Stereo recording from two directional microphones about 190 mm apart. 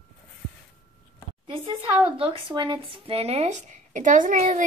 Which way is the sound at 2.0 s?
30° right (ahead or behind).